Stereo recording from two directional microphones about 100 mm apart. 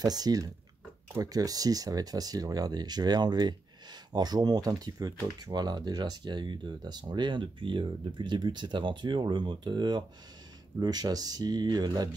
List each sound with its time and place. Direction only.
0.0 s speech: 40° right (ahead or behind)